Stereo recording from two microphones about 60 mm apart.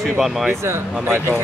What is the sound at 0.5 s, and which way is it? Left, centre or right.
Speech, right.